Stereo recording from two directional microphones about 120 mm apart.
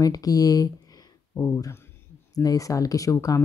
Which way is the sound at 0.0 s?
30° left (ahead or behind).